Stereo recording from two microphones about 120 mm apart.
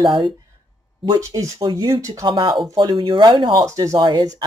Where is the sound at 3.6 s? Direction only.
25° right (ahead or behind).